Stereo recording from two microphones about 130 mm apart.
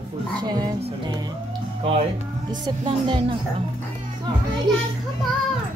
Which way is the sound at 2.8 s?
40° right (ahead or behind).